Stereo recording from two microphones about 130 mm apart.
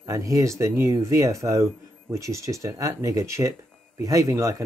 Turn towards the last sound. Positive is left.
turn(degrees=-25)  # may be behind; listen again after turning